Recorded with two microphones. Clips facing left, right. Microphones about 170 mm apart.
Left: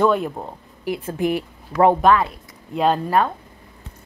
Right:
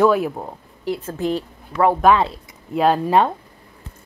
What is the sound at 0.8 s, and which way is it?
A woman's voice, 15° left (ahead or behind).